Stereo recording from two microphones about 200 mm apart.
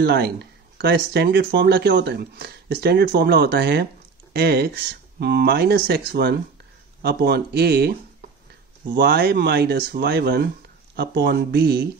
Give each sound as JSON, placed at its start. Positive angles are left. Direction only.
{"t": 0.0, "sound": "speech", "side_deg": -50}